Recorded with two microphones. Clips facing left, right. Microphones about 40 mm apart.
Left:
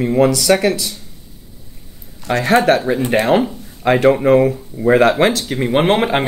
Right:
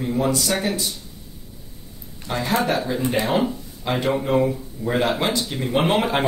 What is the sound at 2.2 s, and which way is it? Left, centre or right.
Speech, left.